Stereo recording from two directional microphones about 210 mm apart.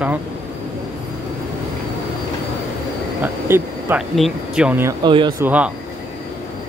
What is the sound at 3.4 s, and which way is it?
Speech, 10° right (ahead or behind).